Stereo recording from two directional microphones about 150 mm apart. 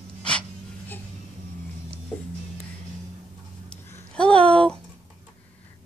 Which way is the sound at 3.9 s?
5° left (ahead or behind).